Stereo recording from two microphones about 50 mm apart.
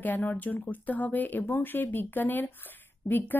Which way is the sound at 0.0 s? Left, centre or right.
Left.